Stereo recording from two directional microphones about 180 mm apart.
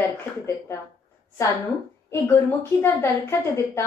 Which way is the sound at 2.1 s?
10° left (ahead or behind).